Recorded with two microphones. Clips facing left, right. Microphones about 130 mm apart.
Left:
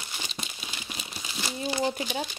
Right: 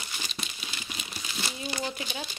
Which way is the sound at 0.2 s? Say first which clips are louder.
Left 1 dB; 20° left (ahead or behind).